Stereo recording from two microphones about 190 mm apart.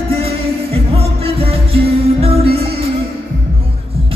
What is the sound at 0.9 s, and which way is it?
Music, 30° right (ahead or behind).